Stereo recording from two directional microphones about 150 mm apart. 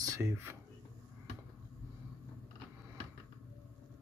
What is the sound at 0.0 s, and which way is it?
Speech, 20° right (ahead or behind).